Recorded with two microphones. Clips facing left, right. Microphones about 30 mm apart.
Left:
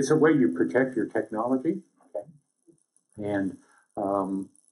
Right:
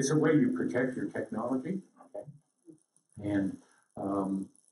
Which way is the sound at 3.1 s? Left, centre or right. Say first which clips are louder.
Left 3 dB; centre.